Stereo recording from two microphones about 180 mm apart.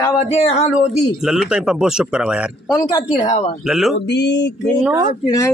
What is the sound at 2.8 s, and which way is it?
Speech, 20° left (ahead or behind).